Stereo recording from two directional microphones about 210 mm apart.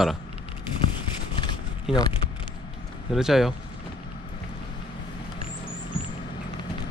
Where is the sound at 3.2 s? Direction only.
Centre (ahead or behind).